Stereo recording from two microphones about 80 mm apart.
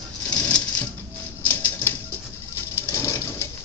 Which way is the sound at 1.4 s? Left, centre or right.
Left.